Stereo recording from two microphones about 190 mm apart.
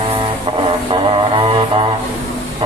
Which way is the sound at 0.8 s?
25° right (ahead or behind).